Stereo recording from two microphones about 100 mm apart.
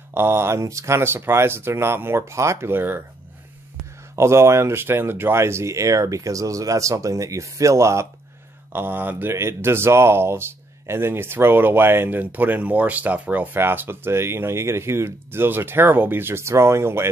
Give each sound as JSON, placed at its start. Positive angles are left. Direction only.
{"t": 0.1, "sound": "speech", "side_deg": -25}
{"t": 4.1, "sound": "speech", "side_deg": -25}